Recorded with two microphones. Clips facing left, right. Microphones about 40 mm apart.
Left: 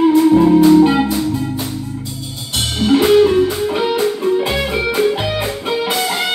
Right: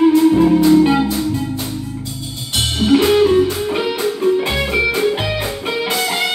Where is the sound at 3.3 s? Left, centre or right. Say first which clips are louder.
Even; centre.